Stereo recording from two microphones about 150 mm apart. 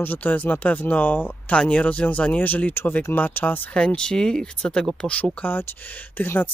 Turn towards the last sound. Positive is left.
turn(degrees=15)  # may be behind; listen again after turning